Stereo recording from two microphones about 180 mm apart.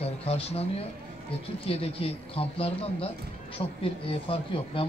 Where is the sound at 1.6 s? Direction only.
30° left (ahead or behind).